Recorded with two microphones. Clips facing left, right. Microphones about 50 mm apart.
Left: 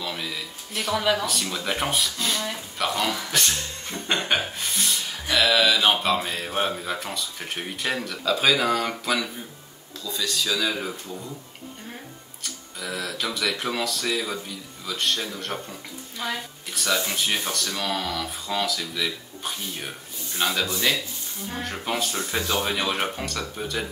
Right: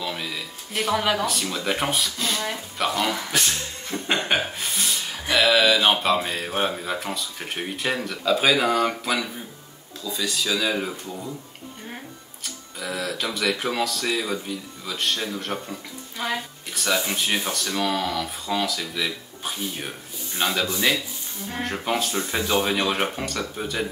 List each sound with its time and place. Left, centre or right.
0.0 s a sound: centre
1.2 s speech: centre
12.4 s speech: centre
16.7 s speech: centre